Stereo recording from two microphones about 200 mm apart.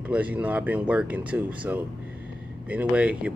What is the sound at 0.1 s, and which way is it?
Speech, 5° right (ahead or behind).